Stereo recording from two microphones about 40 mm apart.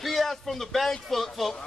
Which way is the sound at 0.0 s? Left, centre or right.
Centre.